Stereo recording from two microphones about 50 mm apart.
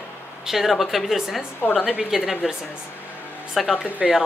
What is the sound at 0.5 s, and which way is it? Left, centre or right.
Speech, centre.